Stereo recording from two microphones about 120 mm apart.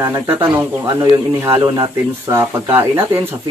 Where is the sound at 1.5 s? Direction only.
35° right (ahead or behind).